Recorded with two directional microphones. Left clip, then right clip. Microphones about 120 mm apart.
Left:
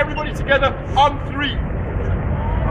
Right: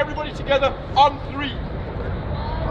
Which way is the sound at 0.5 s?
30° right (ahead or behind).